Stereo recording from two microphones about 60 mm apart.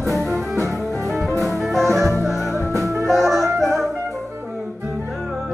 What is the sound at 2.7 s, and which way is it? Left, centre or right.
Music, right.